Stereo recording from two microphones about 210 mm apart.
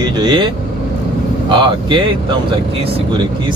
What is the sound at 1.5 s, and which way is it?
Speech, 20° right (ahead or behind).